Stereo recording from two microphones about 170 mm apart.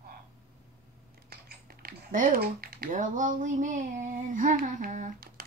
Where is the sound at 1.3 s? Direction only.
65° right (ahead or behind).